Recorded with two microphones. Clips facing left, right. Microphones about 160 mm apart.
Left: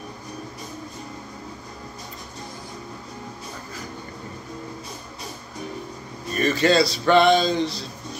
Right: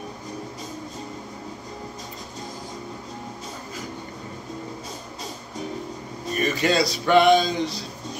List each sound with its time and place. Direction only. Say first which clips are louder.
6.4 s speech: left 3 dB; 15° right (ahead or behind)